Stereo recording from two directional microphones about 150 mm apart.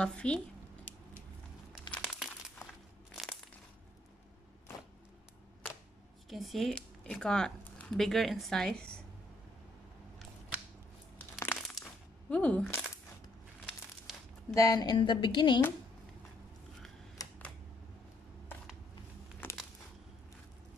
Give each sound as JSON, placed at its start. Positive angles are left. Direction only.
{"t": 0.0, "sound": "speech", "side_deg": 5}
{"t": 1.7, "sound": "crumpling", "side_deg": 5}
{"t": 6.2, "sound": "speech", "side_deg": 0}
{"t": 11.1, "sound": "a sound", "side_deg": 15}
{"t": 14.5, "sound": "a woman's voice", "side_deg": 25}
{"t": 19.4, "sound": "a sound", "side_deg": 15}